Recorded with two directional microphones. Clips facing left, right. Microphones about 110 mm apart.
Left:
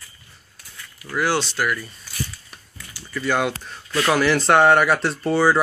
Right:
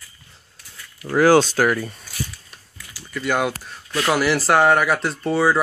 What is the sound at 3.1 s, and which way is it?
Speech, 15° right (ahead or behind).